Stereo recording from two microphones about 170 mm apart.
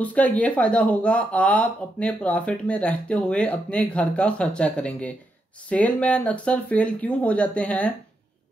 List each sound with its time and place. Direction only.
0.0 s speech: 10° left (ahead or behind)